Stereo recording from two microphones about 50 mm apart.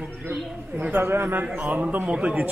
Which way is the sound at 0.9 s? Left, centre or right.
Right.